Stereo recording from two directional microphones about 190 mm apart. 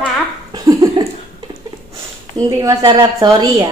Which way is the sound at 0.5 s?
20° right (ahead or behind).